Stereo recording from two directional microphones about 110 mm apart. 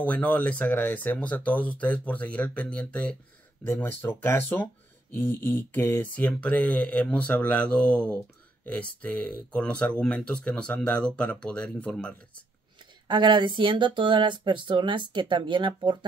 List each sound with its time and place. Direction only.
0.0 s speech: 10° left (ahead or behind)
13.1 s speech: 45° right (ahead or behind)